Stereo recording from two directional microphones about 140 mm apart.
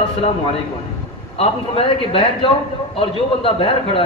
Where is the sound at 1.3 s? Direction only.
40° left (ahead or behind).